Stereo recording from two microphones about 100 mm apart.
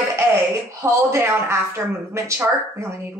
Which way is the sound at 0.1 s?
25° right (ahead or behind).